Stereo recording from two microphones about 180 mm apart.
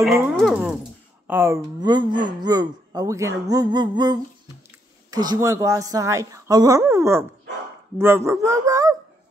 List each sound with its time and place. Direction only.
0.4 s dog: centre (ahead or behind)
1.2 s speech: 10° right (ahead or behind)
1.8 s speech: 25° right (ahead or behind)